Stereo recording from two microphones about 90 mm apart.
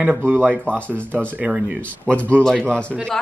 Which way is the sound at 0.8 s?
15° left (ahead or behind).